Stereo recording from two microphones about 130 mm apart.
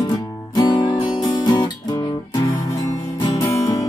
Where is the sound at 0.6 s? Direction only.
35° left (ahead or behind).